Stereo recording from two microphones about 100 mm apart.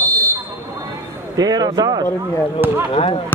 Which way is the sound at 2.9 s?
65° left (ahead or behind).